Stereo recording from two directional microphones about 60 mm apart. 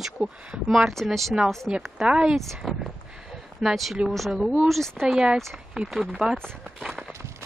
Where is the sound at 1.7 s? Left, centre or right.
Centre.